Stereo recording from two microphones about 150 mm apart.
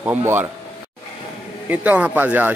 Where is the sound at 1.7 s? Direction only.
10° right (ahead or behind).